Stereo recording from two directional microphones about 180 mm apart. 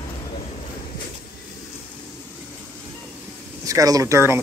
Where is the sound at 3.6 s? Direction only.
20° right (ahead or behind).